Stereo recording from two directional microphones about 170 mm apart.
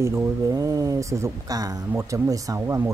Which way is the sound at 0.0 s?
15° right (ahead or behind).